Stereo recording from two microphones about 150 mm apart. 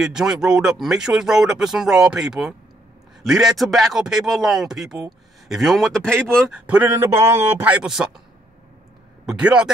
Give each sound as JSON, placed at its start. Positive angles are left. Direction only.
{"t": 0.0, "sound": "speech", "side_deg": -5}
{"t": 6.5, "sound": "a man's voice", "side_deg": -10}
{"t": 9.2, "sound": "speech", "side_deg": -5}